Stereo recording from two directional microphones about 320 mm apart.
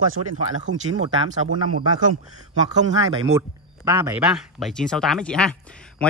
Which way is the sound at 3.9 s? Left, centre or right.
Centre.